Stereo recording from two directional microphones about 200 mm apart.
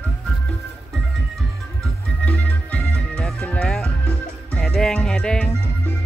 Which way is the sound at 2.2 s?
5° left (ahead or behind).